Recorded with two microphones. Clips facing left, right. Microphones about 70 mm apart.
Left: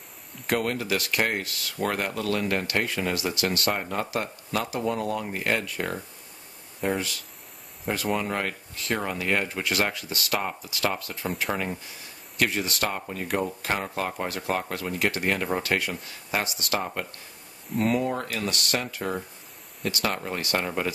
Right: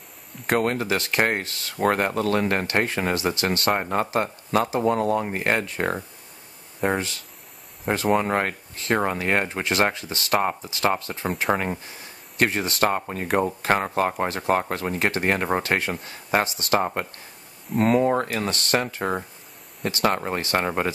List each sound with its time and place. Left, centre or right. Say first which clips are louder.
0.5 s speech: right 4 dB; right
17.7 s speech: right 5 dB; right
18.0 s speech: right 6 dB; right